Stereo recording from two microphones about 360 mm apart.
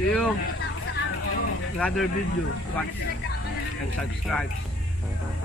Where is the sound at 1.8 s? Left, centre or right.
Centre.